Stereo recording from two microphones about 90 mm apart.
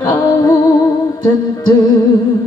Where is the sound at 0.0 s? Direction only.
45° left (ahead or behind).